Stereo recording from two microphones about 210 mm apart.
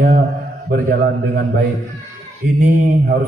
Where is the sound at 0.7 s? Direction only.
45° right (ahead or behind).